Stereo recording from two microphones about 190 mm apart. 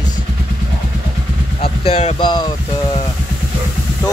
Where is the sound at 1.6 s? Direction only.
30° left (ahead or behind).